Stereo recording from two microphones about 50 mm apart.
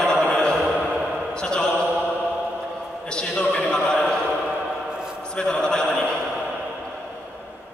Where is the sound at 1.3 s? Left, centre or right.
Centre.